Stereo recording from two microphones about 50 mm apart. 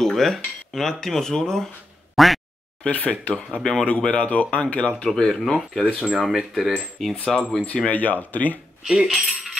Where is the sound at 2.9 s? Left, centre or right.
Left; by 5.9 s centre.